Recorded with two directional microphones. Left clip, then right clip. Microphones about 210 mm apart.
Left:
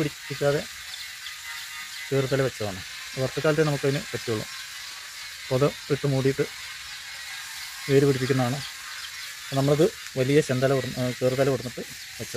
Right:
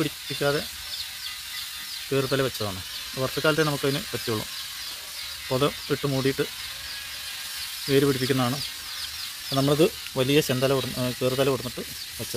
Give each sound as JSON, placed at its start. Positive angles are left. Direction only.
{"t": 2.1, "sound": "speech", "side_deg": -15}
{"t": 5.5, "sound": "speech", "side_deg": -10}
{"t": 7.9, "sound": "speech", "side_deg": -10}